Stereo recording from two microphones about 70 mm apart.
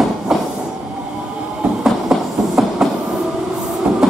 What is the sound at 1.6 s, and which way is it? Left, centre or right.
Train, centre.